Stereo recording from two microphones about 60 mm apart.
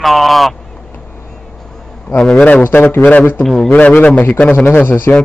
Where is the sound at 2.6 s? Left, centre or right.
Left.